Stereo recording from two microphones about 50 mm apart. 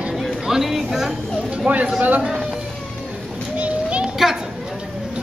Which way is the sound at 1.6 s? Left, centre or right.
Right.